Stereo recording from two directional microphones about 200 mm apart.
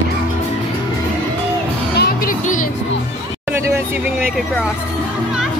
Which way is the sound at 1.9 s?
55° left (ahead or behind).